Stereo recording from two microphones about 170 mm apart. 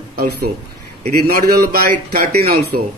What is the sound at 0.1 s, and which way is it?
A man's voice, 65° right (ahead or behind).